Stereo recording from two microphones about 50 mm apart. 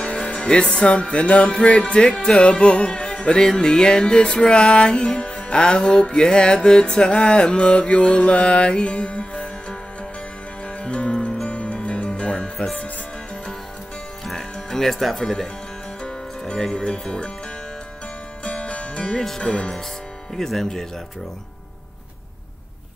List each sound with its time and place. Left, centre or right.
0.2 s music: centre
14.2 s music: centre
16.0 s speech: centre
18.5 s music: left
20.3 s speech: centre